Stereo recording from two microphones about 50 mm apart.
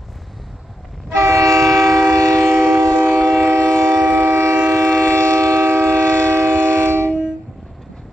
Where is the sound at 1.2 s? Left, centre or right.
Right.